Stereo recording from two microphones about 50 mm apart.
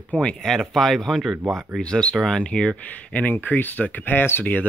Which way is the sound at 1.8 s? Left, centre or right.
Centre.